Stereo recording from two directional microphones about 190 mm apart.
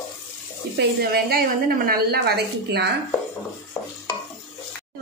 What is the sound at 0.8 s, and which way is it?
Speech, 55° right (ahead or behind).